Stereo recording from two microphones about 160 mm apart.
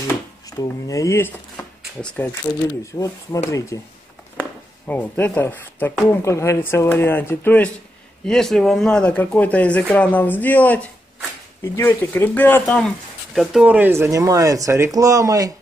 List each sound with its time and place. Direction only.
0.5 s speech: 20° left (ahead or behind); by 15.5 s 20° right (ahead or behind)